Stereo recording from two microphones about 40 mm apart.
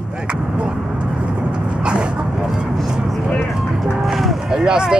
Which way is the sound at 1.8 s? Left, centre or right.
Right.